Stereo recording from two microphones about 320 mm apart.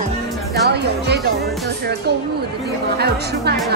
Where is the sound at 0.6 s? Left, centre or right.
Right.